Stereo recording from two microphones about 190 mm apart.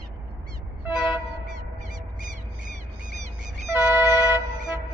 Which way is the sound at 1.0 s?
Centre (ahead or behind).